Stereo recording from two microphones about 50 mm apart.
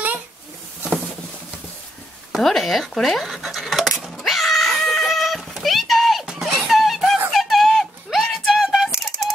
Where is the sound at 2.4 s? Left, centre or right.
Centre.